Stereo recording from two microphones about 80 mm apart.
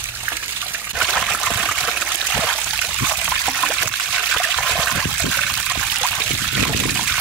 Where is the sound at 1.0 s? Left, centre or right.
Centre.